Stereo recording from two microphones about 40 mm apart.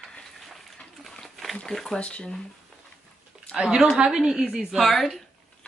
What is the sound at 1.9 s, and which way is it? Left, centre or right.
Speech, left.